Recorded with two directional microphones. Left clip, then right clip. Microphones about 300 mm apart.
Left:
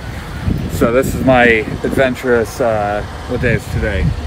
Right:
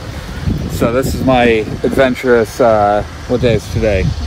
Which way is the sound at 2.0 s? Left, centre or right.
Right.